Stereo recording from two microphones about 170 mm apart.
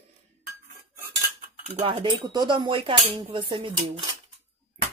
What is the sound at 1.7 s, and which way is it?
Speech, 35° right (ahead or behind).